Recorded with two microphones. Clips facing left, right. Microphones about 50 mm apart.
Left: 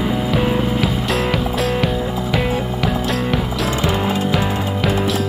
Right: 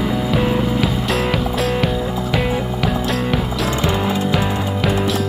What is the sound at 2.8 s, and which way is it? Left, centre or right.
Music, centre.